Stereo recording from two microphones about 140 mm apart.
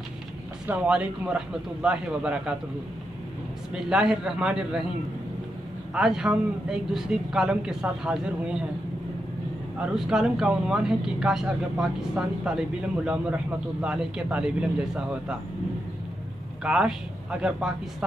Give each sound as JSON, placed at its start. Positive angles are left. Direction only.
{"t": 0.7, "sound": "a man's voice", "side_deg": -10}
{"t": 3.7, "sound": "speech", "side_deg": -5}
{"t": 5.9, "sound": "speech", "side_deg": -5}
{"t": 9.8, "sound": "speech", "side_deg": -5}
{"t": 16.6, "sound": "speech", "side_deg": -5}